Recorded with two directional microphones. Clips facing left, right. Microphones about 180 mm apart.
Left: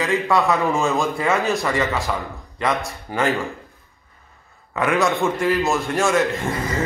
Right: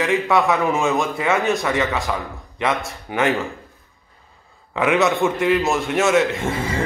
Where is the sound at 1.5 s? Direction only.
Centre (ahead or behind).